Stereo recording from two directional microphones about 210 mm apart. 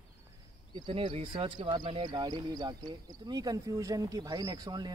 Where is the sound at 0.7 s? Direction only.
25° right (ahead or behind).